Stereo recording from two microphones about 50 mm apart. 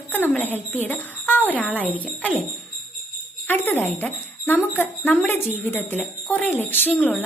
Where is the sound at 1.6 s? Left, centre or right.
Right.